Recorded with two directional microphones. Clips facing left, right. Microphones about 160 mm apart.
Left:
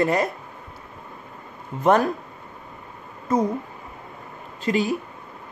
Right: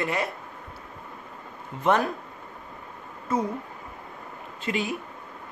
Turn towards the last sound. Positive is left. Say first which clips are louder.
# left 6 dB
turn(degrees=35)  # may be behind; listen again after turning